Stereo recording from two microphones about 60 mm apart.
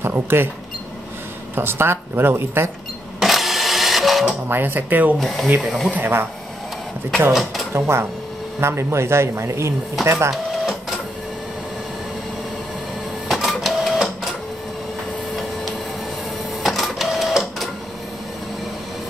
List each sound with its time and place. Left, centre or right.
0.0 s speech: right
1.5 s speech: right
3.2 s printer: centre
4.3 s speech: right
5.2 s speech: centre
5.9 s speech: right
7.7 s speech: right
10.3 s printer: centre
13.3 s printer: centre
16.6 s printer: centre